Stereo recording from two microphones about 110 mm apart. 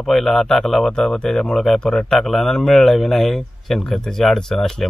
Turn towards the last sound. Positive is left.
turn(degrees=5)  # may be behind; listen again after turning